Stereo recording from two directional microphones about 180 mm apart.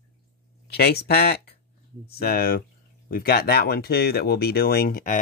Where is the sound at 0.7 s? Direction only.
60° left (ahead or behind).